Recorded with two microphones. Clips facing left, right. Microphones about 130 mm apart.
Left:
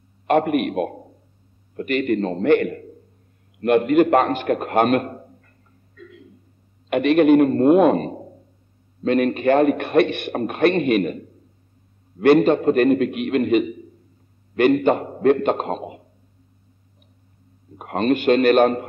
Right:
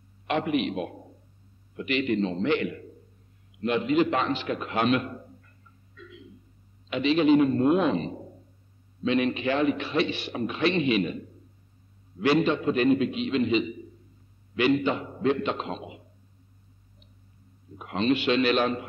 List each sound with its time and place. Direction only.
0.3 s a man's voice: 55° left (ahead or behind)
5.9 s a sound: 50° left (ahead or behind)
6.9 s a man's voice: 60° left (ahead or behind)
17.7 s a man's voice: 50° left (ahead or behind)